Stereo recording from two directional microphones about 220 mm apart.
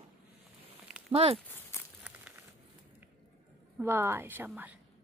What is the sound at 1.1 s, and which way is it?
Speech, 25° right (ahead or behind).